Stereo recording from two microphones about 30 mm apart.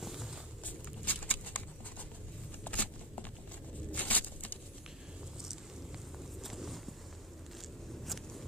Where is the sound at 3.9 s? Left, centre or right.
Left.